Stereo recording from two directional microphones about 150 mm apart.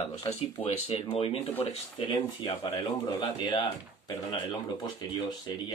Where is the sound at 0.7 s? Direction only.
40° left (ahead or behind).